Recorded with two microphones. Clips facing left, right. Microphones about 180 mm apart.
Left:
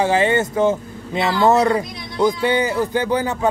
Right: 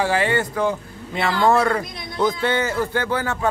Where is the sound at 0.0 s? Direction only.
20° left (ahead or behind).